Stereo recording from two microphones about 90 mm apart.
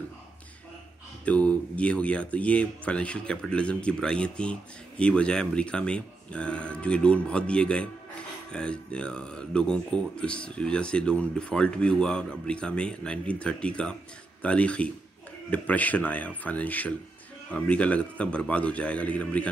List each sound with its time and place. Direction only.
1.2 s speech: 15° left (ahead or behind)